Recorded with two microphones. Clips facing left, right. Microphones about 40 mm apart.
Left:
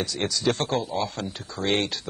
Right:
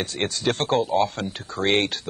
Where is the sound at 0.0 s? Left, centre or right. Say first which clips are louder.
Right 1 dB; right.